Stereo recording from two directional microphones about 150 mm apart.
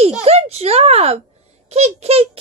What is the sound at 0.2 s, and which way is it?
A child's voice, 45° right (ahead or behind).